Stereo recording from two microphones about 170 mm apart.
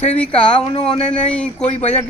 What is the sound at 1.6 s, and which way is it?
Speech, 40° left (ahead or behind).